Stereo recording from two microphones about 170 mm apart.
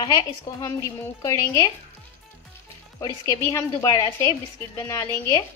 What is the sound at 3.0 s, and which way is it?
A woman's voice, 20° left (ahead or behind).